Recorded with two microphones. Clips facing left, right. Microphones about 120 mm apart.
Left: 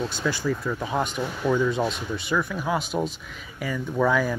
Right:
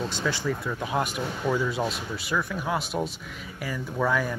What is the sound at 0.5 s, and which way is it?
Speech, centre (ahead or behind).